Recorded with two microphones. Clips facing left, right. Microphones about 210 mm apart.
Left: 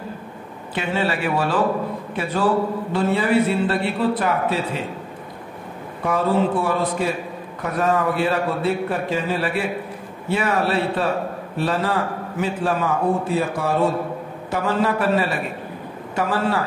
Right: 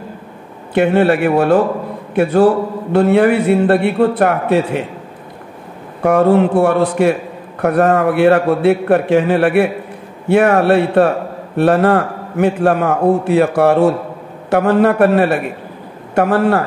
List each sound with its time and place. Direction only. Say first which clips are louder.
0.7 s a man's voice: right 11 dB; 60° right (ahead or behind)
6.0 s a man's voice: right 9 dB; 65° right (ahead or behind)